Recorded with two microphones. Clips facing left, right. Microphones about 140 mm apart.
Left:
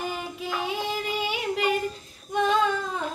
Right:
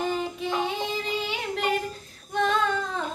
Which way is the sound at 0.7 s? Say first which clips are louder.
Even; 10° left (ahead or behind).